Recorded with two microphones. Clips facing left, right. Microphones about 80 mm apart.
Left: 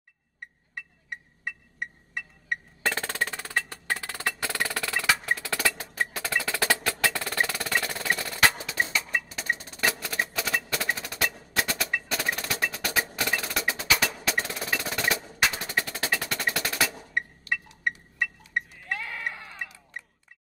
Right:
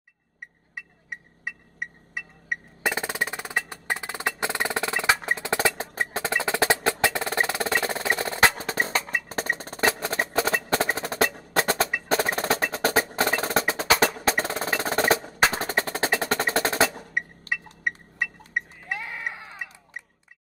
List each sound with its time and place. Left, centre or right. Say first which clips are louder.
0.7 s music: right 1 dB; centre; by 5.9 s right
5.9 s percussion: right 2 dB; right
8.5 s music: right 3 dB; right
9.3 s percussion: right 3 dB; right
9.8 s music: right 6 dB; right
17.2 s a sound: even; centre
17.9 s glass: even; centre
18.6 s sheep: right 1 dB; centre
18.9 s a sound: right 1 dB; centre